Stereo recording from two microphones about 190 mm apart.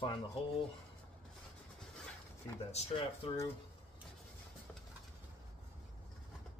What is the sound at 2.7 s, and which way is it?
Speech, 30° left (ahead or behind).